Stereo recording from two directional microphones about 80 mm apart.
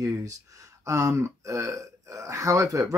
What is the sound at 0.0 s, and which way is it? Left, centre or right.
Speech, right.